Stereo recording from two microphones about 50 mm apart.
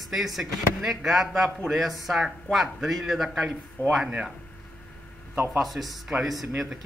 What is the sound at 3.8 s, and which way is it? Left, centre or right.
Speech, left.